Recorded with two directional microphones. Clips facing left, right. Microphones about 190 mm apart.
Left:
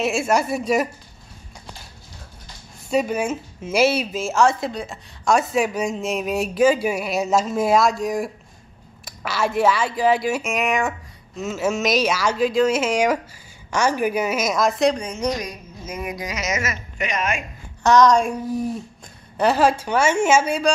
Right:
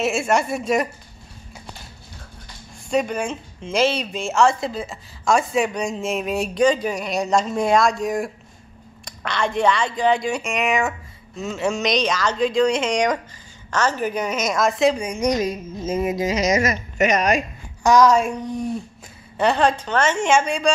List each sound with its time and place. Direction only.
0.0 s speech: centre (ahead or behind)
2.9 s speech: 5° left (ahead or behind); by 15.3 s 10° right (ahead or behind)
15.3 s a woman's voice: 25° right (ahead or behind); by 17.4 s 40° right (ahead or behind)
17.8 s speech: 10° right (ahead or behind)
18.4 s speech: 5° left (ahead or behind)